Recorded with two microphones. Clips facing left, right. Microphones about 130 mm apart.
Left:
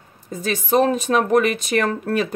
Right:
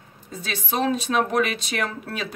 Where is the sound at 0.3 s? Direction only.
45° left (ahead or behind).